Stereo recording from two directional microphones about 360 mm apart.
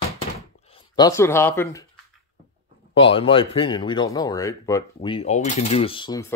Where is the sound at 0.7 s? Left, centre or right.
Centre.